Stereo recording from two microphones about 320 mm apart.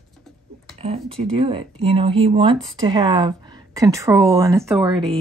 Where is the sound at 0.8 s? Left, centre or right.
Centre.